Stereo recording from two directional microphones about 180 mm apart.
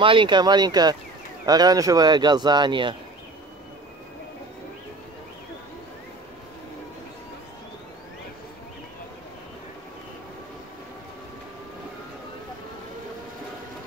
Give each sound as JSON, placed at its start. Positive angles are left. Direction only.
{"t": 0.0, "sound": "speech", "side_deg": -30}